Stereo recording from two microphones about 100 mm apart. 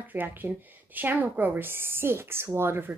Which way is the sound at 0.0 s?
20° right (ahead or behind).